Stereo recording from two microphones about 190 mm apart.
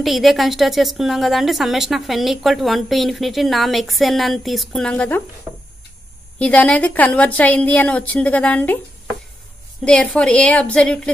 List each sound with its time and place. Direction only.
0.0 s a woman's voice: centre (ahead or behind)
6.3 s a woman's voice: 5° left (ahead or behind)
9.8 s a woman's voice: 5° left (ahead or behind)